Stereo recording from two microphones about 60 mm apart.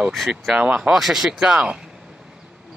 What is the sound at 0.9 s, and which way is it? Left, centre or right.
Speech, centre.